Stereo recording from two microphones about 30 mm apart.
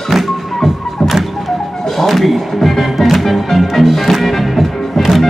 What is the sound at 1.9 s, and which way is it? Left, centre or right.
Music, centre.